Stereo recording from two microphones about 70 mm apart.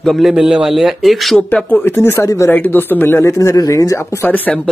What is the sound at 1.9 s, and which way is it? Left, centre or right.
Speech, left.